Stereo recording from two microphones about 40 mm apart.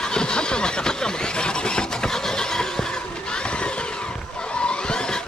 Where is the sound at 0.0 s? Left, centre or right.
Centre.